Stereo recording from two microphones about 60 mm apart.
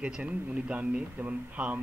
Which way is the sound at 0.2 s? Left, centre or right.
Right.